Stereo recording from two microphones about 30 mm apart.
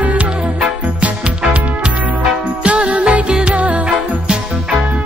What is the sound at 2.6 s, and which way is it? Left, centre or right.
Music, right.